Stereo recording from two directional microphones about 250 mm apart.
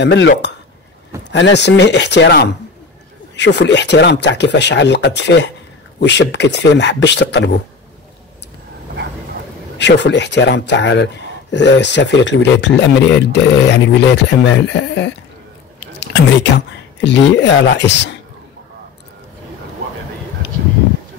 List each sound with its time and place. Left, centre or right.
0.0 s speech: left
9.8 s speech: left